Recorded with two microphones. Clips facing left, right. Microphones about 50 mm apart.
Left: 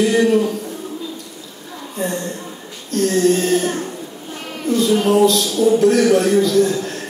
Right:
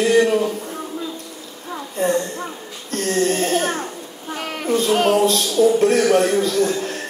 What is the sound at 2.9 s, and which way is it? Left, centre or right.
Speech, right.